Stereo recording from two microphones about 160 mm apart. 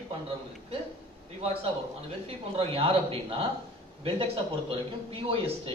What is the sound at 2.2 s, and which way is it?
A man's voice, 35° right (ahead or behind).